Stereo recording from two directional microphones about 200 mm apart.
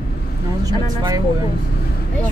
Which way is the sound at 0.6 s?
20° right (ahead or behind).